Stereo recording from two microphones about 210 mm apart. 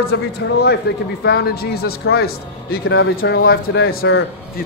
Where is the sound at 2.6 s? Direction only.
75° left (ahead or behind).